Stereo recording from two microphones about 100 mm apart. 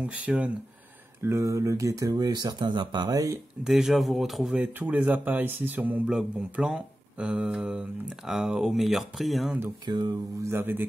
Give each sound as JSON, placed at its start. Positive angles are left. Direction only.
{"t": 0.0, "sound": "speech", "side_deg": -15}
{"t": 1.2, "sound": "speech", "side_deg": -30}
{"t": 3.1, "sound": "speech", "side_deg": -35}
{"t": 3.6, "sound": "speech", "side_deg": -5}
{"t": 9.8, "sound": "speech", "side_deg": -45}
{"t": 10.5, "sound": "speech", "side_deg": -20}